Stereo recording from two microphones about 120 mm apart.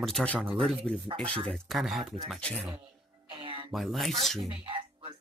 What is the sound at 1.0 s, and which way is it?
Speech, 45° right (ahead or behind).